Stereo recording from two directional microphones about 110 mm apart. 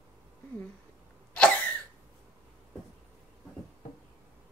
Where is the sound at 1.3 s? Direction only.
10° left (ahead or behind).